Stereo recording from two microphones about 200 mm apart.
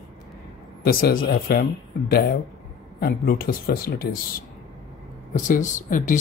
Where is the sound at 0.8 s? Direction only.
50° left (ahead or behind).